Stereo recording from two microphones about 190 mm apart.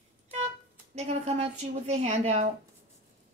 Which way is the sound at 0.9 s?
35° right (ahead or behind).